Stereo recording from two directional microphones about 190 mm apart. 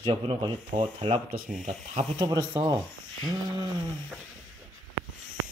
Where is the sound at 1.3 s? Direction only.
45° right (ahead or behind).